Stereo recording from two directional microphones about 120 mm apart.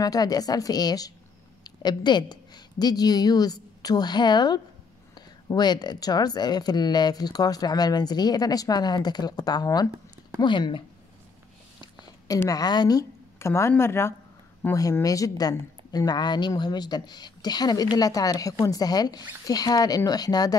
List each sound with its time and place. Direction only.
0.0 s a woman's voice: 30° left (ahead or behind)
12.4 s a woman's voice: 35° left (ahead or behind)